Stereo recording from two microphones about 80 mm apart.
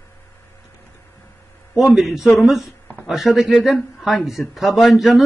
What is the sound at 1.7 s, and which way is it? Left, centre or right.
A man's voice, centre.